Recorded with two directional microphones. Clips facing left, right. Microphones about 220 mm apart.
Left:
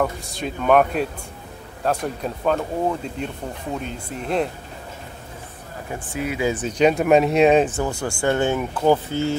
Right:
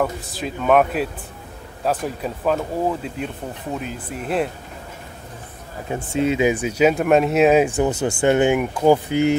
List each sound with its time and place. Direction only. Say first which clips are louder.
0.0 s speech: even; centre (ahead or behind)
5.9 s speech: right 7 dB; 25° right (ahead or behind)